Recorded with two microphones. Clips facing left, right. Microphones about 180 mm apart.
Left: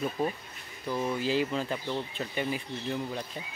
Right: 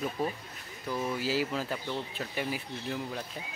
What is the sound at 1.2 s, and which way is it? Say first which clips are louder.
Speech: left 2 dB; 5° right (ahead or behind).